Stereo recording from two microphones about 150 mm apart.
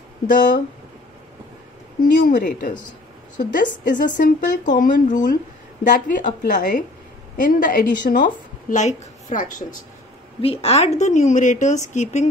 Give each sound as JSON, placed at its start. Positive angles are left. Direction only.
{"t": 0.3, "sound": "a woman's voice", "side_deg": 65}
{"t": 2.1, "sound": "a woman's voice", "side_deg": 65}
{"t": 10.4, "sound": "a woman's voice", "side_deg": 40}